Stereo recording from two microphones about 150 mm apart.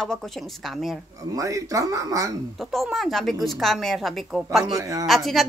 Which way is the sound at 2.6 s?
Centre (ahead or behind).